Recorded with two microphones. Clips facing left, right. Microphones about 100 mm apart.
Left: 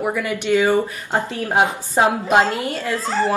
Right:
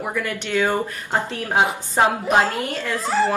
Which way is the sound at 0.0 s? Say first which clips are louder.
Left 4 dB; 10° left (ahead or behind).